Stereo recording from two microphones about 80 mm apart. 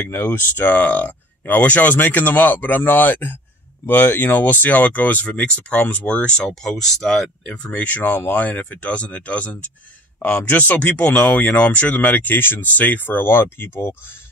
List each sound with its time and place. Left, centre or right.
0.1 s speech: left